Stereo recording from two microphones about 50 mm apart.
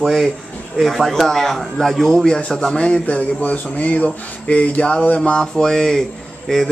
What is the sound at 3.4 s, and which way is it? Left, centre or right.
Speech, left.